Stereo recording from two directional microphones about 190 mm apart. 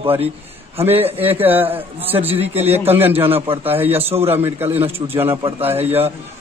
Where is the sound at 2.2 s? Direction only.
30° right (ahead or behind).